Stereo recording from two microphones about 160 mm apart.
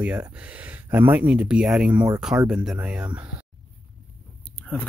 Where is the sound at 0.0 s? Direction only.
10° right (ahead or behind).